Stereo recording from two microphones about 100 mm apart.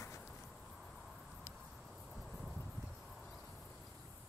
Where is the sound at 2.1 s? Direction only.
Centre (ahead or behind).